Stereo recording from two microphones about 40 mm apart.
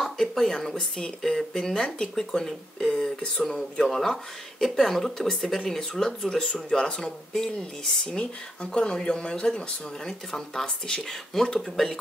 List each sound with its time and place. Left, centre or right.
0.0 s speech: centre
8.2 s speech: left